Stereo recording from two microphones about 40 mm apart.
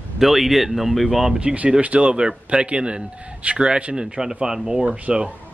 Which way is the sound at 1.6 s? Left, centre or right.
Right.